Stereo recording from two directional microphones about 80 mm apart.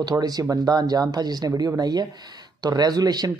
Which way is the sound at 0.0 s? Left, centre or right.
Right.